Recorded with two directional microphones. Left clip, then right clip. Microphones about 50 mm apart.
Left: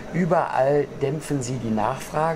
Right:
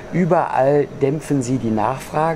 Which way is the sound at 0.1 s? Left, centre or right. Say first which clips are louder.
Right 4 dB; centre.